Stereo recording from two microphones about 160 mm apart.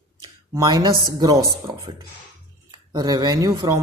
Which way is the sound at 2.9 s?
25° right (ahead or behind).